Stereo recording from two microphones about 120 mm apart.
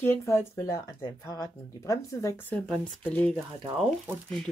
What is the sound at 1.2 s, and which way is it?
Speech, 30° left (ahead or behind).